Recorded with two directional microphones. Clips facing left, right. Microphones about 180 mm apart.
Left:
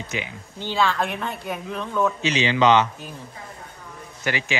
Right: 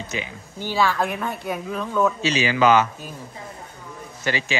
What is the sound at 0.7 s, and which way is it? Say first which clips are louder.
Speech: right 1 dB; 10° right (ahead or behind).